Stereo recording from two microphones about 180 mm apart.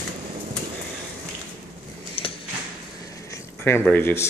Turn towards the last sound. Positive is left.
turn(degrees=10)  # may be behind; listen again after turning